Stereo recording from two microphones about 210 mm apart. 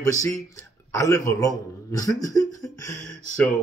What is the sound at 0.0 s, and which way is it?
A man's voice, 15° left (ahead or behind).